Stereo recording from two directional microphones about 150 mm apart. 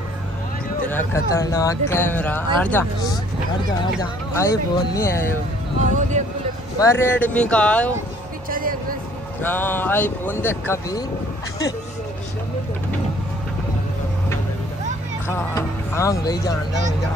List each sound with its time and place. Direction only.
0.8 s speech: 15° left (ahead or behind)
4.0 s speech: 25° left (ahead or behind)
5.9 s speech: 55° right (ahead or behind)
6.8 s speech: 15° left (ahead or behind)
8.5 s music: 70° right (ahead or behind)
9.4 s speech: 10° left (ahead or behind)
15.2 s speech: 15° left (ahead or behind)